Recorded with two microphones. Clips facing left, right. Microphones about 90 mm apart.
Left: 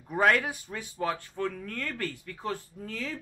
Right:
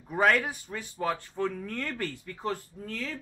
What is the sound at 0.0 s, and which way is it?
Speech, centre (ahead or behind).